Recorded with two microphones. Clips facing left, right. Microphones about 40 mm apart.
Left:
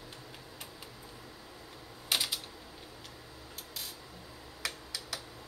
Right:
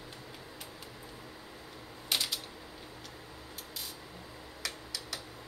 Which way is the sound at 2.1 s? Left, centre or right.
Centre.